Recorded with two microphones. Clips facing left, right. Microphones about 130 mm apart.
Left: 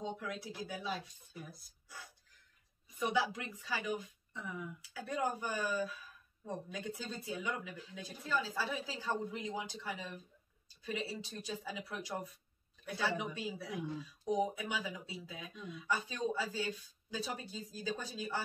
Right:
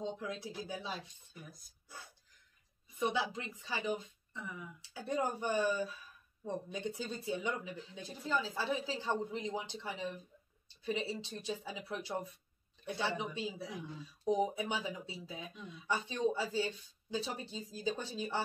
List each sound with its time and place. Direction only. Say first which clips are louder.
0.2 s a woman's voice: right 1 dB; 25° right (ahead or behind)
1.3 s speech: left 4 dB; 5° left (ahead or behind)
3.0 s a woman's voice: even; 25° right (ahead or behind)
4.3 s speech: left 1 dB; centre (ahead or behind)
4.8 s a woman's voice: right 2 dB; 25° right (ahead or behind)